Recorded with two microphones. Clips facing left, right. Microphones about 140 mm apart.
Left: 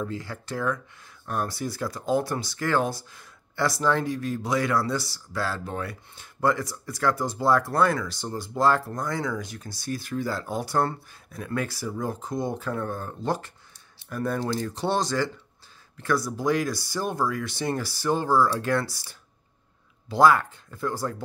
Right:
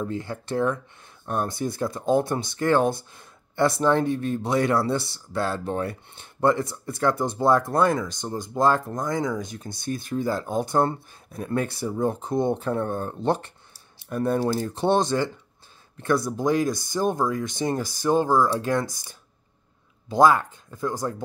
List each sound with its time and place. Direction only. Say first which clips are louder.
0.0 s speech: right 3 dB; 20° right (ahead or behind)
3.2 s a sound: right 4 dB; 25° right (ahead or behind)
4.1 s speech: right 3 dB; 25° right (ahead or behind)